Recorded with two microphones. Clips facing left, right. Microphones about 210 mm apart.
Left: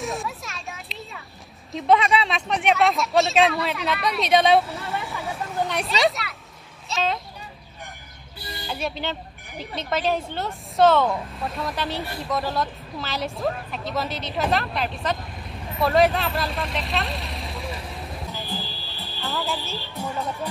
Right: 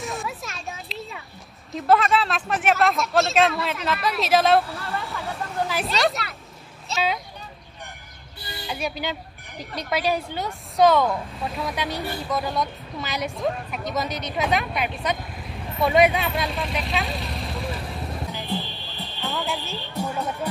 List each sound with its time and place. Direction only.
0.0 s a sound: centre (ahead or behind)
1.7 s speech: centre (ahead or behind)
4.7 s hubbub: centre (ahead or behind)
6.9 s speech: centre (ahead or behind)
8.5 s music: centre (ahead or behind)
9.0 s a sound: 5° right (ahead or behind)
9.7 s speech: centre (ahead or behind)
9.9 s a woman's voice: 10° right (ahead or behind)
11.1 s speech: centre (ahead or behind)
13.0 s a woman's voice: 15° right (ahead or behind)
13.4 s a woman's voice: 5° right (ahead or behind)
14.7 s speech: centre (ahead or behind)
16.1 s vehicle: centre (ahead or behind)